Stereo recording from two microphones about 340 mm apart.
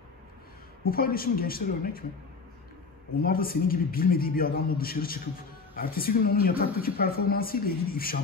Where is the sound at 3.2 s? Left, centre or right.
Left.